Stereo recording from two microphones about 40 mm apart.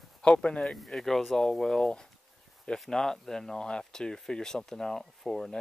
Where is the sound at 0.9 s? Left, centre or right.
Centre.